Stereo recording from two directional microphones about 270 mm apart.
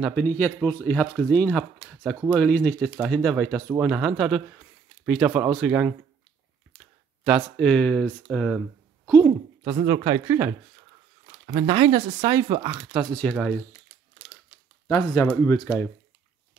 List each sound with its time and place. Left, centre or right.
0.0 s speech: centre
7.2 s speech: centre
9.7 s speech: centre
12.9 s speech: centre
14.9 s speech: centre